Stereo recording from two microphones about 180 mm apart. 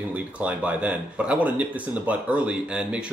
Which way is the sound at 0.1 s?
10° right (ahead or behind).